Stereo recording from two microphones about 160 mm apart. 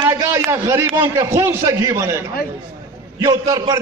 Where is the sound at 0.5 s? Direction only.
15° right (ahead or behind).